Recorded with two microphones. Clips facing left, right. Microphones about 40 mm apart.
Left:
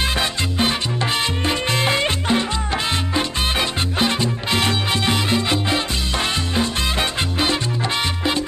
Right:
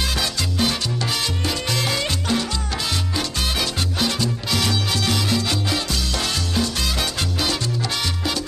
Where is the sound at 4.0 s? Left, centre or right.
Left.